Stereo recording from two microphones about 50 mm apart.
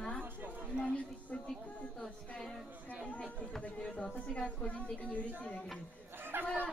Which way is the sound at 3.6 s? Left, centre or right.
Left.